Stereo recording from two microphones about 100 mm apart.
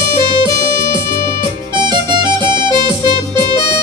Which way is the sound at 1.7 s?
50° right (ahead or behind).